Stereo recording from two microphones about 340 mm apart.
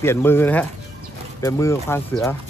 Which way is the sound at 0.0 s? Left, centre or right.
Centre.